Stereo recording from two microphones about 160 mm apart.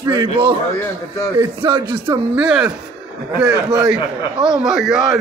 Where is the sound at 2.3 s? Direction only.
5° right (ahead or behind).